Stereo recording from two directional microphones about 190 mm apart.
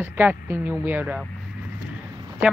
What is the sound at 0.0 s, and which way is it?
Speech, 10° right (ahead or behind).